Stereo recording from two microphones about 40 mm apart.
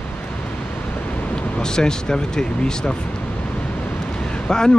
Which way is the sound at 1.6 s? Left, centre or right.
Centre.